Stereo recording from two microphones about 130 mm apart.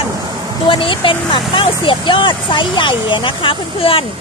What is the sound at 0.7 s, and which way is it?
Speech, 40° left (ahead or behind).